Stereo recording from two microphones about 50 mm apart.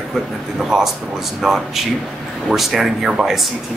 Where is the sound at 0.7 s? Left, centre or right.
Centre.